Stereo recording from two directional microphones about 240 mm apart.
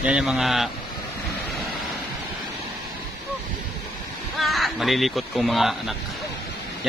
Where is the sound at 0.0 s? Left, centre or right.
Centre.